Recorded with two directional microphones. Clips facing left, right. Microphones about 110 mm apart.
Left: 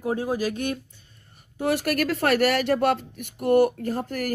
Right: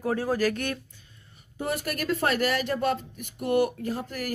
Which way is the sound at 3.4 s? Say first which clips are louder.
Left 5 dB; 40° left (ahead or behind).